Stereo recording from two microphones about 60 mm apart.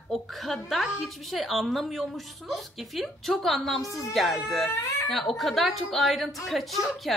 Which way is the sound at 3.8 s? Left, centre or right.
Left.